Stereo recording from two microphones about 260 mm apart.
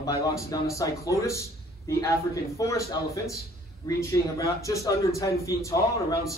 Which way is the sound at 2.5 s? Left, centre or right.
Centre.